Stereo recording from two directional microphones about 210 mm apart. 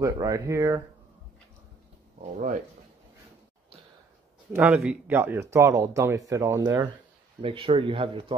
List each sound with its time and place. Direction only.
0.0 s speech: 15° right (ahead or behind)
4.5 s speech: 10° right (ahead or behind); by 8.4 s 25° right (ahead or behind)